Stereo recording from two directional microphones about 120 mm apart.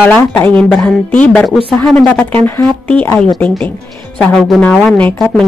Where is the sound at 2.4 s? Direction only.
15° left (ahead or behind).